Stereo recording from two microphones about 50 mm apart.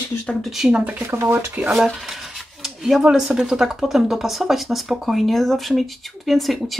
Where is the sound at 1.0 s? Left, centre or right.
Right.